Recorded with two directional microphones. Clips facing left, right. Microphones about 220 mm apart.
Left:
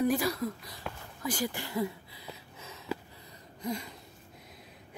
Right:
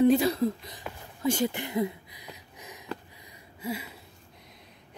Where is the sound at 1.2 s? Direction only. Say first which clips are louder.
Right 7 dB; 25° right (ahead or behind); by 3.9 s 5° right (ahead or behind).